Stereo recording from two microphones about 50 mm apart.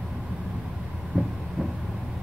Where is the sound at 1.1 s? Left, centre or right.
Right.